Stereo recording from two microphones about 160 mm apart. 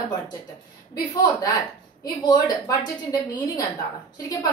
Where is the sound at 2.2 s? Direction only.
25° left (ahead or behind).